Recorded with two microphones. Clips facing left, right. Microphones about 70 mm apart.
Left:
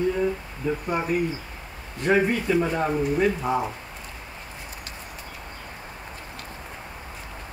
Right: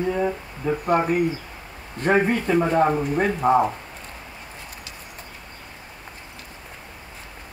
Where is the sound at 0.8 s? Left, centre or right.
Right.